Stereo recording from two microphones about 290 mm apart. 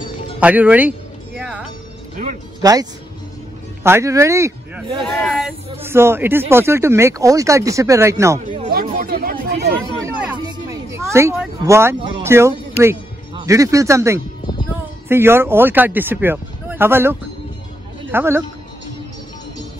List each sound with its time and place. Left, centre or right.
0.4 s speech: centre
2.6 s speech: centre
5.0 s speech: centre
8.5 s a sound: right
10.0 s a sound: centre
12.8 s speech: centre